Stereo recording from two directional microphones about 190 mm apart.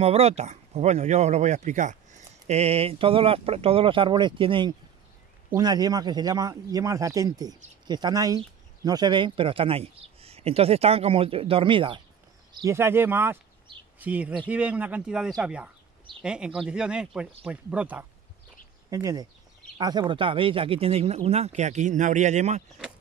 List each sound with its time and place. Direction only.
0.0 s speech: 30° right (ahead or behind)
12.5 s speech: 15° right (ahead or behind); by 22.6 s 35° right (ahead or behind)